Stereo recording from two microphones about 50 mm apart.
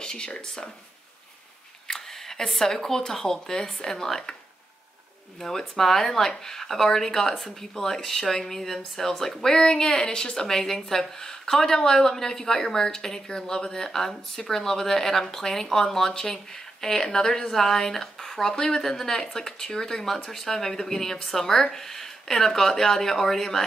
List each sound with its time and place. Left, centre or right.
0.0 s speech: centre
1.9 s speech: centre
5.4 s speech: centre